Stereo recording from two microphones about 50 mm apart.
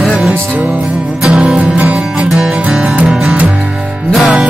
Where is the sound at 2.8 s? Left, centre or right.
Right.